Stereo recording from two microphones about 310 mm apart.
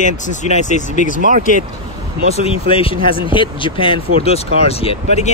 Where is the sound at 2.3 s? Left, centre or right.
Centre.